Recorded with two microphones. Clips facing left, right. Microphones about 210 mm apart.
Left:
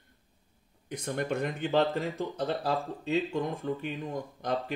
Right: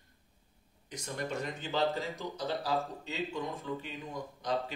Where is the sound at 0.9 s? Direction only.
55° left (ahead or behind).